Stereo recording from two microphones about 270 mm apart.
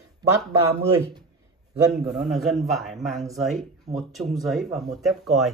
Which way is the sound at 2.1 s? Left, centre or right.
Centre.